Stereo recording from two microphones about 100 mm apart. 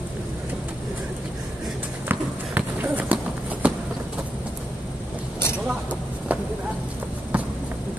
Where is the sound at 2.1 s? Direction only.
20° right (ahead or behind).